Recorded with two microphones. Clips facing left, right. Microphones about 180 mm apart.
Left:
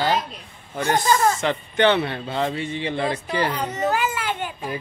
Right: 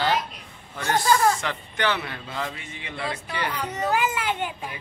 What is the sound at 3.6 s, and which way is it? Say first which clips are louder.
Speech: left 2 dB; 15° right (ahead or behind).